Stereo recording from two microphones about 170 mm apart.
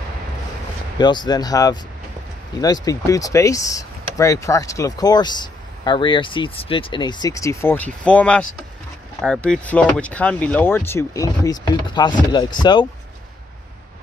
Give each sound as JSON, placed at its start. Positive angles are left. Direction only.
{"t": 0.9, "sound": "speech", "side_deg": 25}